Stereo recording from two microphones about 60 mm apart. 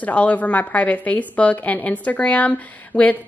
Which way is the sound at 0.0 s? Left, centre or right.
Left.